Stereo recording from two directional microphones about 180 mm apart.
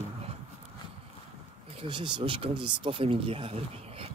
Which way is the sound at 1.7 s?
30° right (ahead or behind).